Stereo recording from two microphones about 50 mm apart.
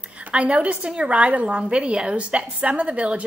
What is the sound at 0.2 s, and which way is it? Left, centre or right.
A woman's voice, right.